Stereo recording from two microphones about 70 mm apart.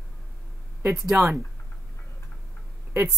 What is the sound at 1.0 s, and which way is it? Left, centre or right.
Speech, right.